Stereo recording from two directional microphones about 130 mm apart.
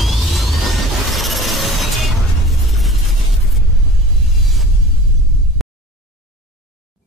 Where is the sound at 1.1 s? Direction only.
Centre (ahead or behind).